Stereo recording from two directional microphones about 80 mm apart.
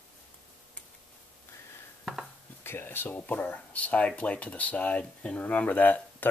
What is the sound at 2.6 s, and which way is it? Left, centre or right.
Speech, left.